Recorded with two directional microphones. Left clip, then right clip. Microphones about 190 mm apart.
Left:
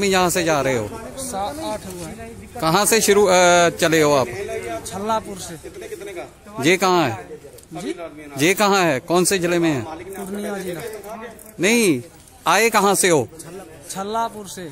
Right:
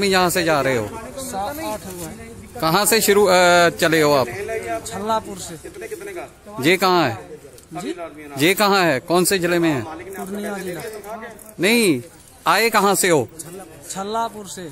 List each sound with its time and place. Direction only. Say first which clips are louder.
0.0 s speech: right 1 dB; centre (ahead or behind)
2.5 s speech: even; centre (ahead or behind)
4.3 s a sound: right 2 dB; 20° left (ahead or behind)
4.8 s speech: left 2 dB; centre (ahead or behind)
6.6 s speech: even; centre (ahead or behind)
8.4 s speech: even; centre (ahead or behind)
11.6 s speech: even; centre (ahead or behind)